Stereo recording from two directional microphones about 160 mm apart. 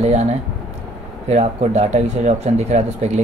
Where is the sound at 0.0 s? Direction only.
45° right (ahead or behind).